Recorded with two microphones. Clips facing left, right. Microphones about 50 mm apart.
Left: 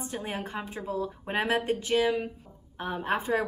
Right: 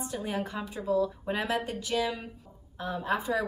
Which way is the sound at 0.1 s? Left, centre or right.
Left.